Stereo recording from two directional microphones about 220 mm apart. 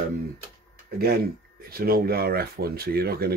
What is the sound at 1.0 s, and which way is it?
Speech, 45° right (ahead or behind).